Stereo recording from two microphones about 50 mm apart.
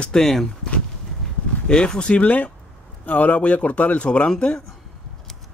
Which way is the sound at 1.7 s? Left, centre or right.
Centre.